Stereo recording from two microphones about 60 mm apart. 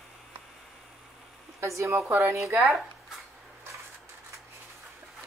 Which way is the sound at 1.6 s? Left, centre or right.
Right.